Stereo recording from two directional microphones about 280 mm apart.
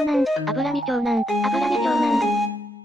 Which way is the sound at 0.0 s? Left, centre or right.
Centre.